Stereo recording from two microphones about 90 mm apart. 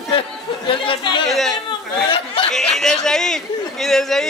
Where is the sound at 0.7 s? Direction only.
70° left (ahead or behind).